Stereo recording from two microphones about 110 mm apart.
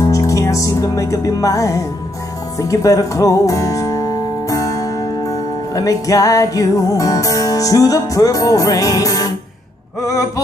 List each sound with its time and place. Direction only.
0.0 s music: 30° left (ahead or behind)